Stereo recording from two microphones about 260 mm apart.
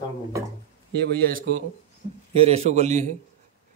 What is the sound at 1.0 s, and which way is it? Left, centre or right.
A man's voice, right.